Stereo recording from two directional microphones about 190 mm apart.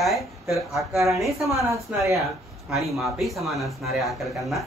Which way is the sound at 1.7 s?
15° right (ahead or behind).